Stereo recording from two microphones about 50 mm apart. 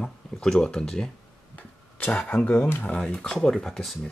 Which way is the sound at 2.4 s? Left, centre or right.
Left.